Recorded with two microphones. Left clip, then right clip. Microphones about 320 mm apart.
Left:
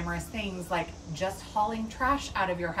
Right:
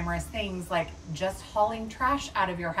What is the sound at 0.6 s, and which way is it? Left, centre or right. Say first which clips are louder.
A woman's voice: right 1 dB; centre.